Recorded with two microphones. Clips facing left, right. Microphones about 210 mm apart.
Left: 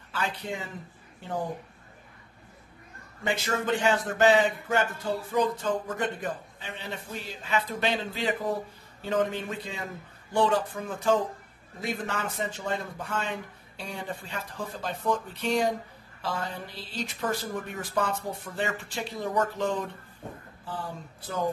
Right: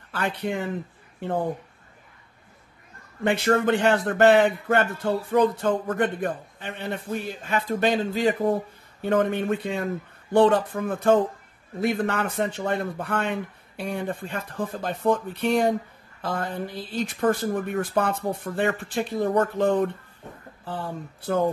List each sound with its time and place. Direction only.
0.1 s speech: 60° right (ahead or behind)
3.3 s speech: 60° right (ahead or behind)
9.0 s speech: 55° right (ahead or behind)